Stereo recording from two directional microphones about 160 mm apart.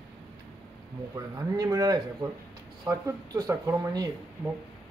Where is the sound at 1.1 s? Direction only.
20° right (ahead or behind).